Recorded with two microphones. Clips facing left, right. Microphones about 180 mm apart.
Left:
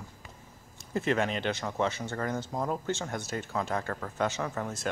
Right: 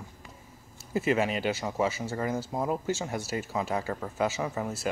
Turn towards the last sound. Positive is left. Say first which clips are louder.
# right 2 dB
turn(degrees=-5)  # may be behind; listen again after turning